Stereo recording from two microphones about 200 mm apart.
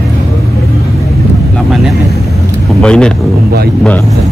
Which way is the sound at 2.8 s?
5° left (ahead or behind).